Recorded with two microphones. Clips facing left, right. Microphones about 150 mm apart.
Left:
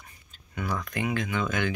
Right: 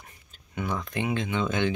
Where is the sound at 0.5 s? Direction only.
25° right (ahead or behind).